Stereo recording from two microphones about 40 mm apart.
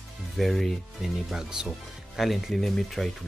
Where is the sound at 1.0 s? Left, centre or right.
Centre.